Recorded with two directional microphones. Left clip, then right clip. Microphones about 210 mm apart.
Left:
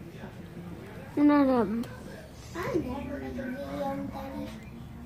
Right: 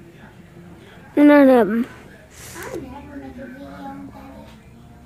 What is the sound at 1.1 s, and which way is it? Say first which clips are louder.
Speech: right 12 dB; 50° right (ahead or behind).